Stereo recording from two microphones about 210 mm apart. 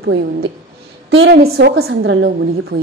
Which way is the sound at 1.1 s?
70° right (ahead or behind).